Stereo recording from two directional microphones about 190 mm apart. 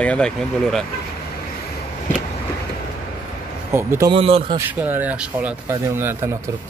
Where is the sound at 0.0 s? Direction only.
5° left (ahead or behind).